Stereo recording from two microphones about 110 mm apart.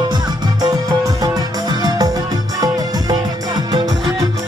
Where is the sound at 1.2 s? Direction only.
35° right (ahead or behind).